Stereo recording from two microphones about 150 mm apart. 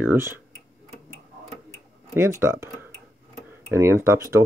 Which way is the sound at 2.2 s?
15° right (ahead or behind).